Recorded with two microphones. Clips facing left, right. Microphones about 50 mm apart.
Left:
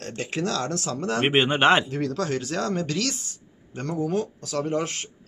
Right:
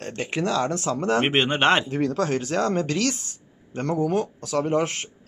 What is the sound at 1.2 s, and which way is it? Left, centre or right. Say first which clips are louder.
Speech: left 4 dB; centre.